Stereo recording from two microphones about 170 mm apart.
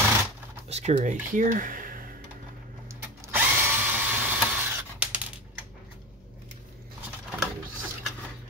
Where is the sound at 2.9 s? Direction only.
10° right (ahead or behind).